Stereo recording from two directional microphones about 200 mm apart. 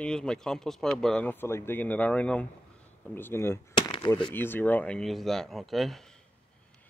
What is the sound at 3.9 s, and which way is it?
Speech, 25° left (ahead or behind).